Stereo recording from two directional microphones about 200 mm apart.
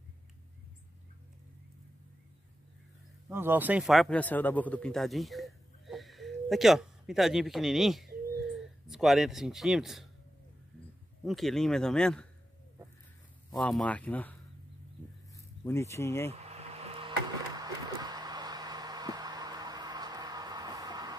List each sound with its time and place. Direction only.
3.3 s a man's voice: 10° right (ahead or behind)
11.2 s speech: centre (ahead or behind)
13.6 s speech: 5° left (ahead or behind)
15.3 s speech: 15° left (ahead or behind)
16.3 s a sound: 30° right (ahead or behind)